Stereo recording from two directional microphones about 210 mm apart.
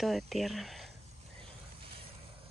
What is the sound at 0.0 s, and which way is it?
Speech, centre (ahead or behind).